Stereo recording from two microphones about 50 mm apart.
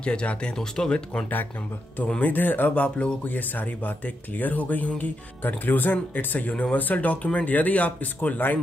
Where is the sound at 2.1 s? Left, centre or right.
Left.